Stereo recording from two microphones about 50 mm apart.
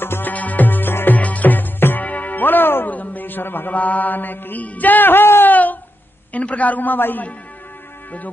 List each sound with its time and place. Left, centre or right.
0.0 s music: left
0.3 s music: left
5.5 s a sound: left
6.3 s a man's voice: left